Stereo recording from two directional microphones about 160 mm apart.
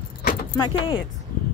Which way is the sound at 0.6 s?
30° left (ahead or behind).